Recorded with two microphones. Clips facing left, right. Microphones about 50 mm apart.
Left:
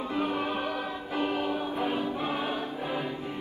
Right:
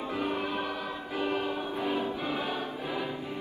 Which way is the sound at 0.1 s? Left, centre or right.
Left.